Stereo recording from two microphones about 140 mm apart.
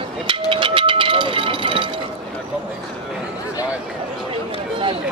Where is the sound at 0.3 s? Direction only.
40° right (ahead or behind).